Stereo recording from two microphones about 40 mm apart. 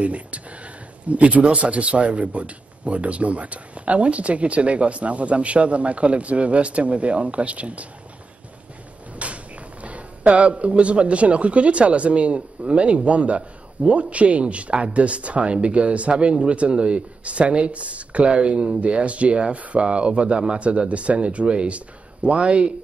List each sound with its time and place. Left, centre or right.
0.0 s speech: right
9.1 s speech: right